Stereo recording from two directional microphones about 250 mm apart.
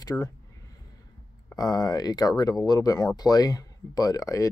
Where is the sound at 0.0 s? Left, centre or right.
Centre.